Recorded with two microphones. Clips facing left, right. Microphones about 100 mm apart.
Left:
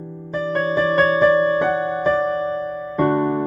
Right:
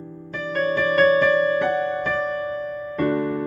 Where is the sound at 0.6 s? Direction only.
20° left (ahead or behind).